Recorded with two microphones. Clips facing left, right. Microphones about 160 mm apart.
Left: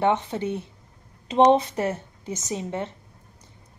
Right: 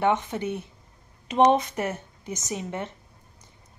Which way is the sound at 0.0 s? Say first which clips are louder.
Left 1 dB; 30° left (ahead or behind).